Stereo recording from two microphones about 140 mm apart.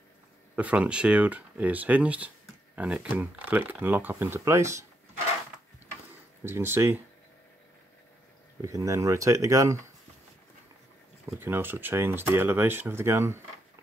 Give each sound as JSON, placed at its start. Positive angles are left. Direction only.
{"t": 0.6, "sound": "speech", "side_deg": -10}
{"t": 6.4, "sound": "speech", "side_deg": -15}
{"t": 8.5, "sound": "speech", "side_deg": -20}
{"t": 11.3, "sound": "speech", "side_deg": -15}